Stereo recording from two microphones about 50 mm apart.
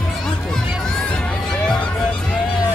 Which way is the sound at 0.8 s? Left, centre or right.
Centre.